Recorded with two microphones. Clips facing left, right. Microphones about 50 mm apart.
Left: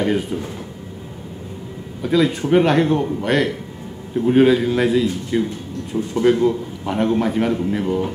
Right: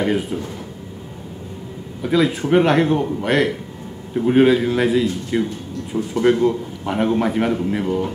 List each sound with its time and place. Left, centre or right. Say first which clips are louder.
0.0 s speech: even; centre
2.0 s a man's voice: even; centre
5.9 s speech: even; centre
6.3 s a man's voice: even; centre